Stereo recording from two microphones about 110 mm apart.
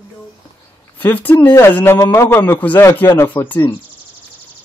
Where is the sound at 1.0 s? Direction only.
15° left (ahead or behind).